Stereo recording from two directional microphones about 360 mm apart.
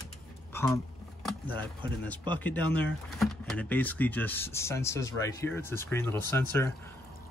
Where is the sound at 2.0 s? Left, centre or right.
Centre.